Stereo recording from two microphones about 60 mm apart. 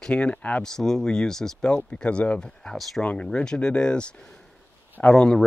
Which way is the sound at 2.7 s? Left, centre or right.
Centre.